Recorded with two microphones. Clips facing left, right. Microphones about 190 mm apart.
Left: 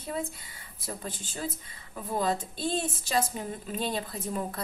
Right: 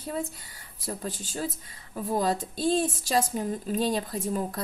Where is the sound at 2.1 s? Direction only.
40° right (ahead or behind).